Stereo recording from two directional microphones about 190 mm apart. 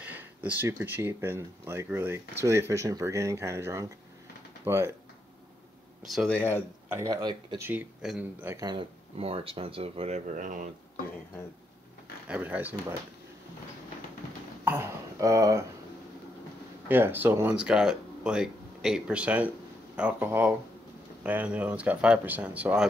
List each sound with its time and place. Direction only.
0.0 s speech: 10° right (ahead or behind)
6.1 s speech: 5° left (ahead or behind)
6.9 s speech: 15° right (ahead or behind); by 10.7 s 40° right (ahead or behind)
12.3 s speech: 10° right (ahead or behind)
14.6 s a sound: 10° right (ahead or behind)
16.8 s speech: 10° right (ahead or behind)